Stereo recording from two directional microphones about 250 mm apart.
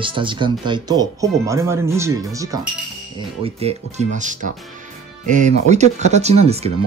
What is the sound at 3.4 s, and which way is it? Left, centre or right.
Speech, right.